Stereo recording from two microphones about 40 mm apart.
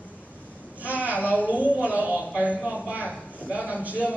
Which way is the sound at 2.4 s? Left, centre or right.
Right.